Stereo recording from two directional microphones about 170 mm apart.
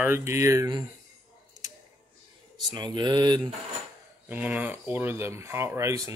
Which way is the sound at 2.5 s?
25° right (ahead or behind).